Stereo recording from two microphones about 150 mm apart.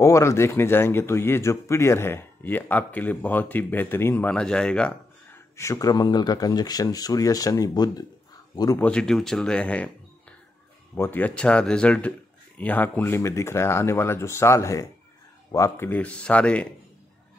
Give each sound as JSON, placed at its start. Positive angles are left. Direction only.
{"t": 0.0, "sound": "speech", "side_deg": 20}
{"t": 5.6, "sound": "speech", "side_deg": 20}
{"t": 8.7, "sound": "speech", "side_deg": 5}
{"t": 11.0, "sound": "speech", "side_deg": 10}